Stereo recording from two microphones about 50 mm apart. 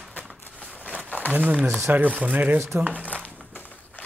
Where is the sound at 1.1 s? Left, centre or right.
Right.